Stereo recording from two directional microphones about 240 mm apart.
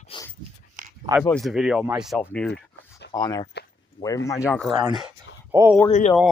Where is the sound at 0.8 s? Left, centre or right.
Right.